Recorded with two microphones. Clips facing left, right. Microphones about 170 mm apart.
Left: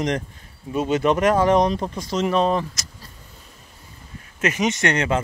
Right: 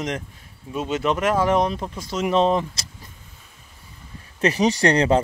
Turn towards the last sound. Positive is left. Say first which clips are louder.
# right 4 dB
turn(degrees=-35)  # may be behind; listen again after turning